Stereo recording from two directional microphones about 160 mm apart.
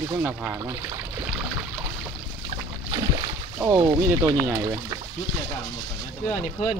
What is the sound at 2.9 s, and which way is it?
Rowboat, 25° right (ahead or behind).